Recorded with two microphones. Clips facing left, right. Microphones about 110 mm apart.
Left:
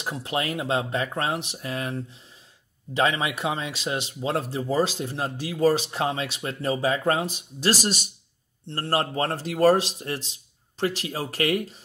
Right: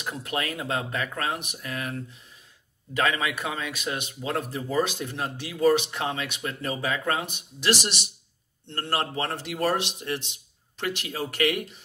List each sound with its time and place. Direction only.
0.0 s speech: 30° left (ahead or behind)